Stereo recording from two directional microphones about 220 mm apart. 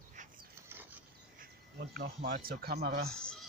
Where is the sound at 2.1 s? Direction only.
40° right (ahead or behind).